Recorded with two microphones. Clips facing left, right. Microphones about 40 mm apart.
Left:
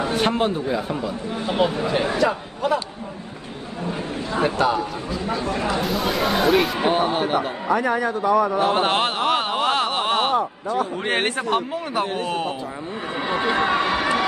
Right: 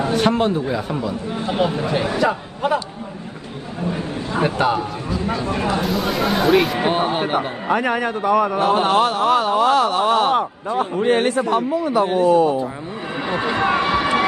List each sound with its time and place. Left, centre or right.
0.2 s speech: centre
2.1 s a man's voice: right
4.4 s a man's voice: right
5.9 s speech: centre
6.9 s a man's voice: right
8.8 s speech: left
13.7 s crowd: right